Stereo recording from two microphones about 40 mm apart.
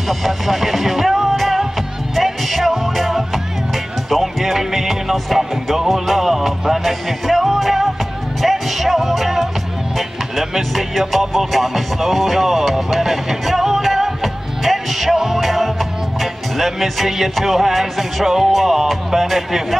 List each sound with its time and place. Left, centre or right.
0.1 s music: centre
10.7 s music: centre
18.5 s speech: centre